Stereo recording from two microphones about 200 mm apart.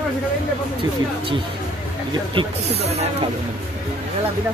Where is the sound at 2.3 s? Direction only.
30° right (ahead or behind).